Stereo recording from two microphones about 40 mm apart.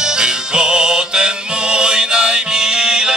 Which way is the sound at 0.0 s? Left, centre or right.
Centre.